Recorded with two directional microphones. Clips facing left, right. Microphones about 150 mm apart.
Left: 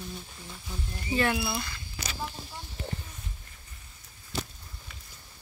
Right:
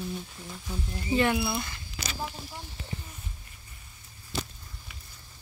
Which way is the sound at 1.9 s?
85° right.